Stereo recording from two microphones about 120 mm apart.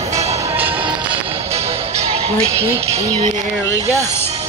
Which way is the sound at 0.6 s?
15° right (ahead or behind).